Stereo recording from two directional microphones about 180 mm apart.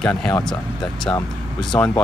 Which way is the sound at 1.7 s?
10° left (ahead or behind).